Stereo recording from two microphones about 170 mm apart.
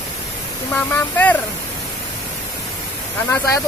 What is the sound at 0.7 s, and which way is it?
Speech, 10° left (ahead or behind).